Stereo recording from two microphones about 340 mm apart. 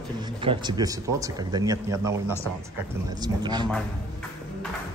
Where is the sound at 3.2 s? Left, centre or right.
Centre.